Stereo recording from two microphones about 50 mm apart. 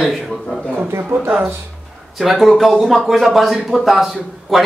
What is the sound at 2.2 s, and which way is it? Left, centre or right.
A man's voice, centre.